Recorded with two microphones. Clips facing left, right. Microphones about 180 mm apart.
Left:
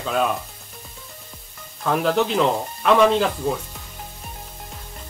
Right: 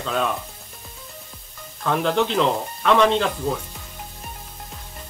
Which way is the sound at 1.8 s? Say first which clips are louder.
Left 1 dB; 5° left (ahead or behind).